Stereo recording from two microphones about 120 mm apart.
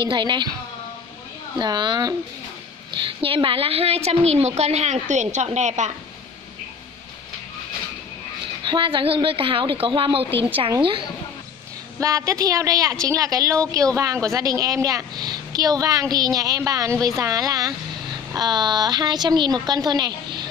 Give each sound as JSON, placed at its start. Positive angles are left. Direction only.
{"t": 0.0, "sound": "a woman's voice", "side_deg": -40}
{"t": 1.6, "sound": "a woman's voice", "side_deg": -40}
{"t": 8.6, "sound": "a woman's voice", "side_deg": -45}
{"t": 12.0, "sound": "a woman's voice", "side_deg": -30}